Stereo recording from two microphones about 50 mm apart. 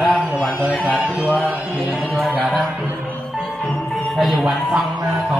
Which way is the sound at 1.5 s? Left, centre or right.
Right.